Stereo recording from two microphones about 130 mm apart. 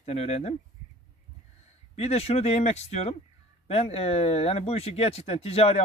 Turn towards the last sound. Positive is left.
turn(degrees=50)  # may be behind; listen again after turning